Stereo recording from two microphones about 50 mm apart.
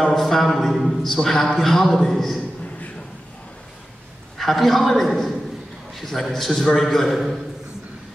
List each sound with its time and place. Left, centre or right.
0.0 s a man's voice: centre
4.4 s a man's voice: centre